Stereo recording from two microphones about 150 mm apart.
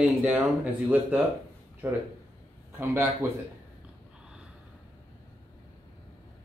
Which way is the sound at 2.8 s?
15° right (ahead or behind).